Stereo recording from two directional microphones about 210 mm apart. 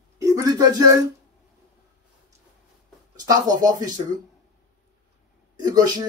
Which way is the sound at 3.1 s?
20° right (ahead or behind).